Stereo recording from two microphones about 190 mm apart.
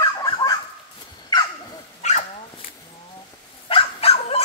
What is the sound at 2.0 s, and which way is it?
Dog, 35° left (ahead or behind).